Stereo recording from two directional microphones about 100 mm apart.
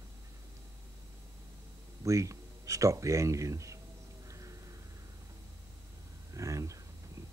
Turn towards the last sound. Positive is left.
turn(degrees=-30)  # may be behind; listen again after turning